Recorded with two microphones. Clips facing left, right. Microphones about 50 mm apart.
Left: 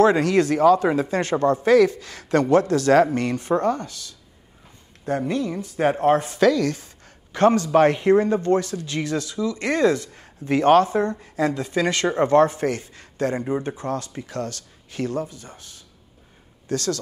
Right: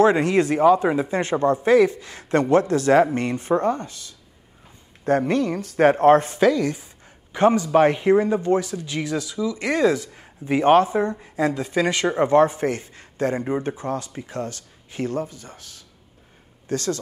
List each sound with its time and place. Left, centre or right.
0.0 s speech: right
5.0 s speech: right
6.3 s speech: right
15.3 s speech: left
16.6 s speech: right